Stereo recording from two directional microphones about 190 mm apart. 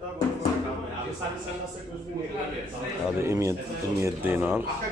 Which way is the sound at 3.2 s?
15° right (ahead or behind).